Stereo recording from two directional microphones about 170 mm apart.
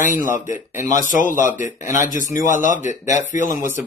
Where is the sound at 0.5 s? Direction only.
15° right (ahead or behind).